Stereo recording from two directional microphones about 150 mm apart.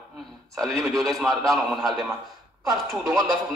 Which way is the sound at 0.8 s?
Centre (ahead or behind).